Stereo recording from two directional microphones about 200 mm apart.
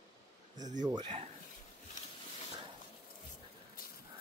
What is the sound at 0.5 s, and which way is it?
Speech, 40° right (ahead or behind).